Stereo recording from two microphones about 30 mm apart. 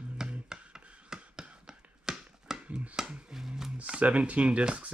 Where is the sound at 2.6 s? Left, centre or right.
Right.